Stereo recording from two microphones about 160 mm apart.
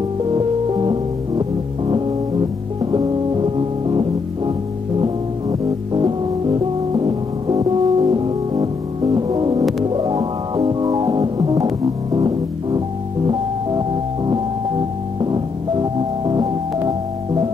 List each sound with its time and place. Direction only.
2.8 s music: 30° right (ahead or behind)
13.3 s music: 30° right (ahead or behind)